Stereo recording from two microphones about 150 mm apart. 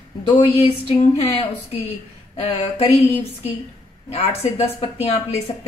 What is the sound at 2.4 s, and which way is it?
Speech, 40° left (ahead or behind).